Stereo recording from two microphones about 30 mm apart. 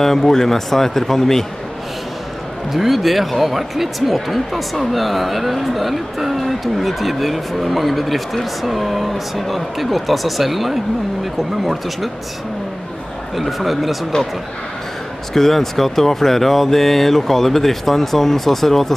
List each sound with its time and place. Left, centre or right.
0.0 s speech: centre
2.7 s speech: centre
13.4 s speech: centre
14.1 s speech: left
15.3 s speech: centre